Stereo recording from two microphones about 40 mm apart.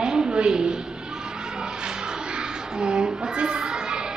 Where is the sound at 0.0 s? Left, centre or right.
Centre.